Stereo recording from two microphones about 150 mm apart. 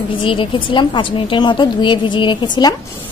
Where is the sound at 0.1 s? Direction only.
35° left (ahead or behind).